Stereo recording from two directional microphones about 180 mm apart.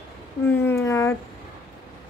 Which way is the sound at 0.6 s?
15° left (ahead or behind).